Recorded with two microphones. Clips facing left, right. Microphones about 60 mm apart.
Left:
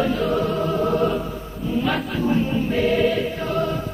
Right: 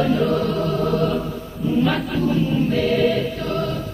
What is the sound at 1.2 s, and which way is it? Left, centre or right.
Choir, centre.